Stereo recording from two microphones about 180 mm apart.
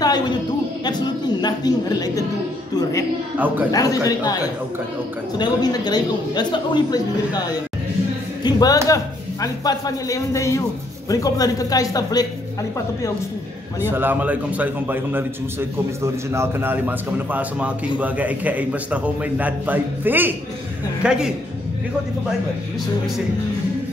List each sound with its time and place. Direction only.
0.8 s a man's voice: 25° left (ahead or behind)
3.3 s a man's voice: 10° right (ahead or behind)
3.7 s a man's voice: 20° left (ahead or behind)
5.4 s a man's voice: 20° left (ahead or behind)
13.7 s a man's voice: 10° right (ahead or behind)